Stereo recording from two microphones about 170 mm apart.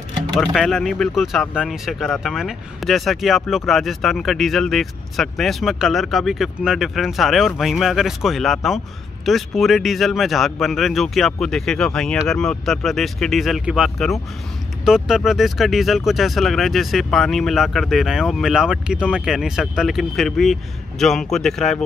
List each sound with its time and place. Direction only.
0.4 s speech: centre (ahead or behind)